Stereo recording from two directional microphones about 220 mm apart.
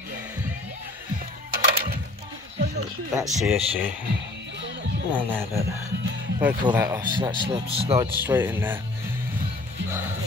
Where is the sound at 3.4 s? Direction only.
5° right (ahead or behind).